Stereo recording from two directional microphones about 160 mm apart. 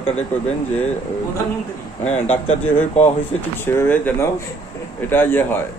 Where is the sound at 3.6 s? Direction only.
15° left (ahead or behind).